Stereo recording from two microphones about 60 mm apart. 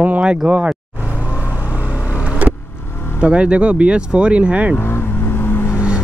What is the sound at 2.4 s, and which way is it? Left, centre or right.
Vehicle, right.